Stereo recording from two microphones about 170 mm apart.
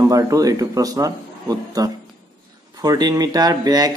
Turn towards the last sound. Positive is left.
turn(degrees=-20)  # may be behind; listen again after turning